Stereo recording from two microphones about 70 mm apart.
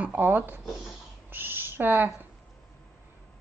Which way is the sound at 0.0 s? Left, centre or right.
Right.